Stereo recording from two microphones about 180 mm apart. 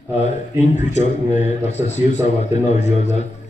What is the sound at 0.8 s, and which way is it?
A man's voice, 40° left (ahead or behind).